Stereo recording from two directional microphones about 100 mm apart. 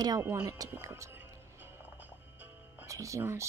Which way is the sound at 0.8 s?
30° right (ahead or behind).